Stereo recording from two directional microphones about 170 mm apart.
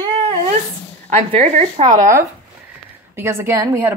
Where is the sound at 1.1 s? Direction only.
40° right (ahead or behind).